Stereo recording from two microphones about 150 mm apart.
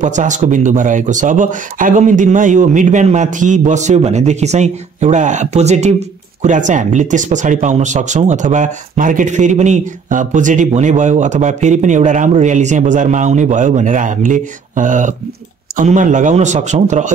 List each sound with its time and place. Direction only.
0.0 s a man's voice: 55° right (ahead or behind)